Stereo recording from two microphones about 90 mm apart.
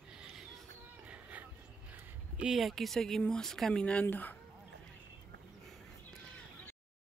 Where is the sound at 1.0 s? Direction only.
15° right (ahead or behind).